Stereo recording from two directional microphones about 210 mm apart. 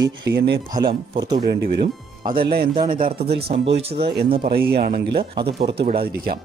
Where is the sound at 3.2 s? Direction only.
30° right (ahead or behind).